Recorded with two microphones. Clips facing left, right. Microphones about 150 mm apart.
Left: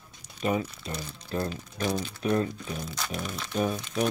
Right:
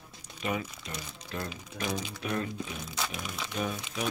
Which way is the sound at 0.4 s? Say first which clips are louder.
Left 5 dB; 35° left (ahead or behind).